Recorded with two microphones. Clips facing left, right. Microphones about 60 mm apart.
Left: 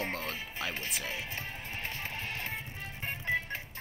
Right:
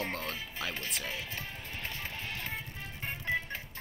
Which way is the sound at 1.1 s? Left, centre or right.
Left.